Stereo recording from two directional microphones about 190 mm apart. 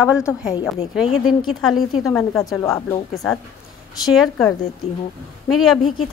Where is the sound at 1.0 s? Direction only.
Centre (ahead or behind).